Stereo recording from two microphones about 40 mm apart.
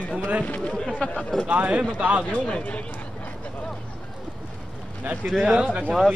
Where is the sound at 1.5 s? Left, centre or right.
Right.